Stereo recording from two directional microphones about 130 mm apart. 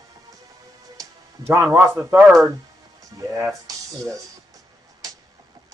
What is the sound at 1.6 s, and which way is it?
Speech, centre (ahead or behind).